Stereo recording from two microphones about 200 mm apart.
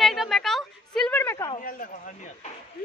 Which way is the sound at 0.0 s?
Centre (ahead or behind).